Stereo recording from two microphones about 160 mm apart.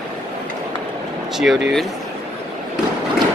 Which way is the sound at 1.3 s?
Centre (ahead or behind).